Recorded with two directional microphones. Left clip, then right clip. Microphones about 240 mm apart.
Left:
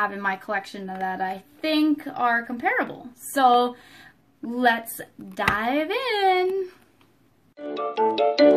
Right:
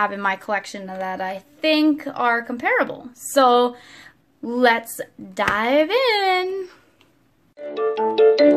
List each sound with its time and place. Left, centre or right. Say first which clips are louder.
0.0 s speech: right 4 dB; right
7.6 s music: right 2 dB; centre